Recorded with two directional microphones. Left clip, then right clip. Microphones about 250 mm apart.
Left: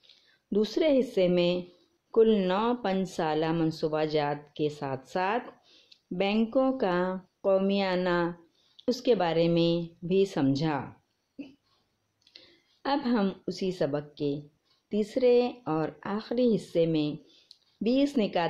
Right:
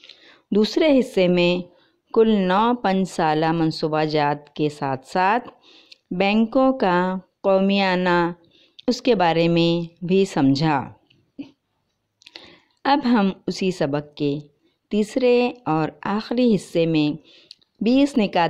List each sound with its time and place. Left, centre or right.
0.0 s speech: right
12.2 s speech: right